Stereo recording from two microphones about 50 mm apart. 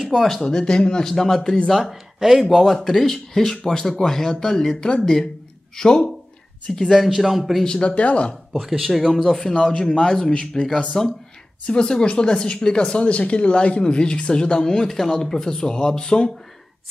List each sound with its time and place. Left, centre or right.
0.1 s speech: centre
1.7 s speech: centre
7.0 s speech: centre
7.6 s speech: centre
8.5 s speech: centre